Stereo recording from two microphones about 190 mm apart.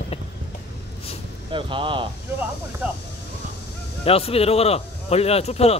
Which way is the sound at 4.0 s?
30° left (ahead or behind).